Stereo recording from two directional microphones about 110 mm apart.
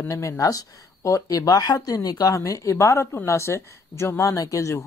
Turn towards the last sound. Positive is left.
turn(degrees=25)  # may be behind; listen again after turning